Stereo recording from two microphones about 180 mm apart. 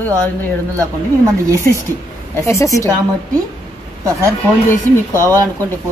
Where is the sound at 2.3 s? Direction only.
15° left (ahead or behind).